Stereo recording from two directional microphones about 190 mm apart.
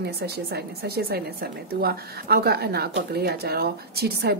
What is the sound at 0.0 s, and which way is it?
A woman's voice, 55° right (ahead or behind).